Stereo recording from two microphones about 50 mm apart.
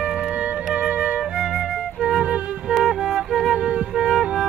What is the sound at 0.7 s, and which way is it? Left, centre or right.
Music, centre.